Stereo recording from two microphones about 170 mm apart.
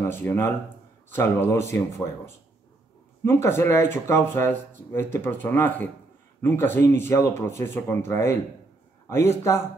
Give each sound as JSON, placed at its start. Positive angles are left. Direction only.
{"t": 0.0, "sound": "speech", "side_deg": 15}
{"t": 3.4, "sound": "speech", "side_deg": 15}